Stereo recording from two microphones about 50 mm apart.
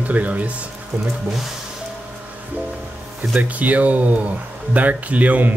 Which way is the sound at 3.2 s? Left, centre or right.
Right.